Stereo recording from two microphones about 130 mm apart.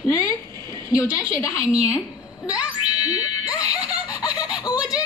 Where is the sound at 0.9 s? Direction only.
25° left (ahead or behind).